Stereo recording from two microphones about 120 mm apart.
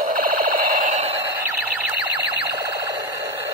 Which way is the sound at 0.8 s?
75° right (ahead or behind).